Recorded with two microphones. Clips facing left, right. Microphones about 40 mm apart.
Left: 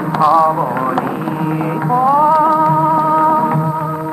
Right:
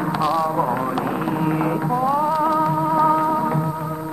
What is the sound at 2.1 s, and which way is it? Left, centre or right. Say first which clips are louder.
Music: left 10 dB; left.